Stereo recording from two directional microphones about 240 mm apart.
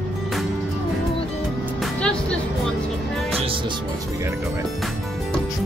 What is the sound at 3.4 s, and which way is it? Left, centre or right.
Music, right.